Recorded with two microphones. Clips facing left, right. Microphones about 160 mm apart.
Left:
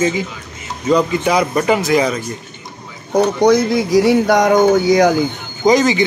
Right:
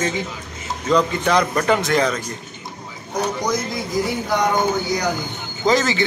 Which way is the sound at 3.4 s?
75° left (ahead or behind).